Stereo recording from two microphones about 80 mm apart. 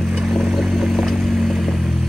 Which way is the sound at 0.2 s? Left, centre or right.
Centre.